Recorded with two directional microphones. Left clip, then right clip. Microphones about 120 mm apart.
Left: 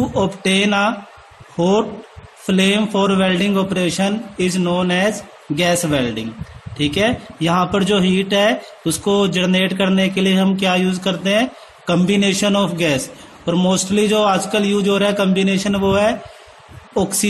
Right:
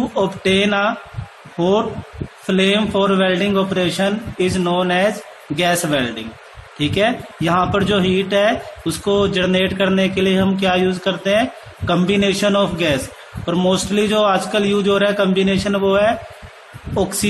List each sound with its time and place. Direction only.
0.1 s speech: 45° left (ahead or behind)
2.4 s speech: 50° left (ahead or behind)